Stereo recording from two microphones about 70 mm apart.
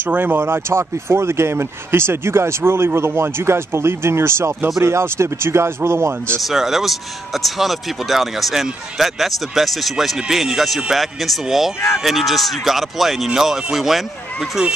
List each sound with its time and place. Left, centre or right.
0.0 s speech: right
6.4 s speech: centre